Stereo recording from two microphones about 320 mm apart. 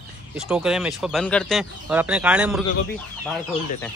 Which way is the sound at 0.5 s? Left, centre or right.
Centre.